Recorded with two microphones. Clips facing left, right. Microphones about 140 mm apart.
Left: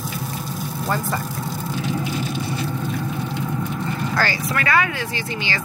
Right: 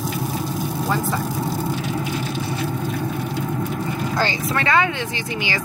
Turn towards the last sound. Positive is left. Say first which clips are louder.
# right 1 dB
turn(degrees=-25)  # may be behind; listen again after turning